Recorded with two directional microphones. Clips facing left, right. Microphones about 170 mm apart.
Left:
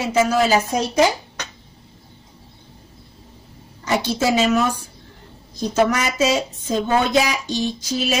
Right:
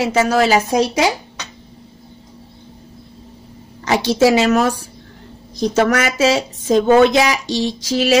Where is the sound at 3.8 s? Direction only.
90° right.